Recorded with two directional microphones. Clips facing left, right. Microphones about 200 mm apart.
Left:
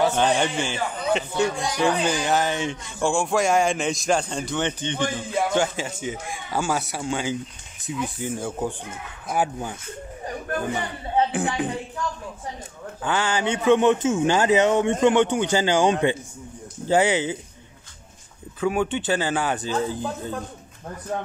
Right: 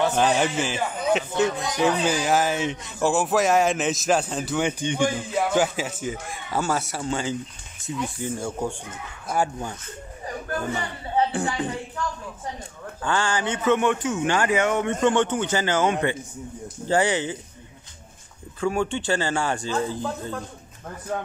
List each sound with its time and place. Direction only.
0.0 s a man's voice: 5° right (ahead or behind)
11.4 s a man's voice: 10° left (ahead or behind)
13.0 s a man's voice: 5° left (ahead or behind)
13.5 s a man's voice: 15° left (ahead or behind)
18.6 s a man's voice: 5° left (ahead or behind)
19.7 s a man's voice: 15° left (ahead or behind)